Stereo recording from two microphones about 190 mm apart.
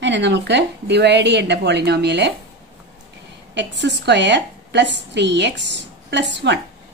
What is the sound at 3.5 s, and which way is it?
A woman's voice, 65° right (ahead or behind).